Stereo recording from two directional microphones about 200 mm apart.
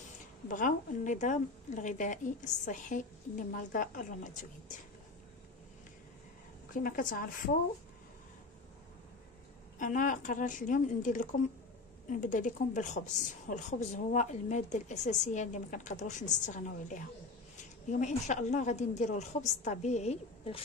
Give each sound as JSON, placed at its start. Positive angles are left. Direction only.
{"t": 0.5, "sound": "a woman's voice", "side_deg": 40}
{"t": 6.7, "sound": "speech", "side_deg": 40}
{"t": 9.8, "sound": "a woman's voice", "side_deg": 40}